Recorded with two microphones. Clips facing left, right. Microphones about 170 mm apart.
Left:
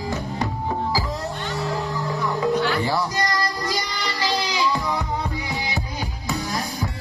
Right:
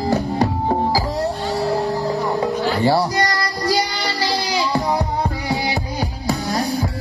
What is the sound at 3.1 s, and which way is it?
Music, 70° right (ahead or behind).